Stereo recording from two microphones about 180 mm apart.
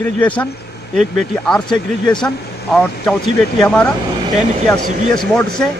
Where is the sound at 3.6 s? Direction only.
15° left (ahead or behind).